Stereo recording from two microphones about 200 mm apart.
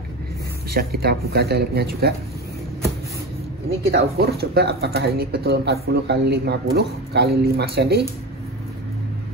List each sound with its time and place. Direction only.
0.7 s speech: 50° right (ahead or behind)
3.9 s speech: 50° right (ahead or behind)